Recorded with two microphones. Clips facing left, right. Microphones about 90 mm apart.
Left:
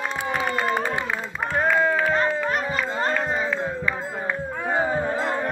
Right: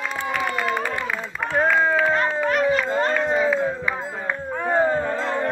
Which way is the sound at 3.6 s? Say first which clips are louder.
Right 2 dB; 10° right (ahead or behind).